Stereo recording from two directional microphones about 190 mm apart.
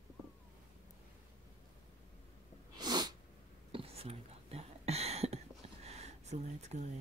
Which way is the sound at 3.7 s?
30° right (ahead or behind).